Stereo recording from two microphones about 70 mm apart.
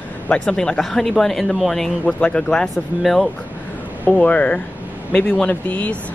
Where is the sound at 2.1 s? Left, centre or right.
Centre.